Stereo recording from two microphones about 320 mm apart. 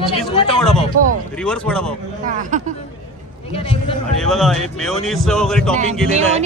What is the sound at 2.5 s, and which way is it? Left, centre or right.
Speech, right.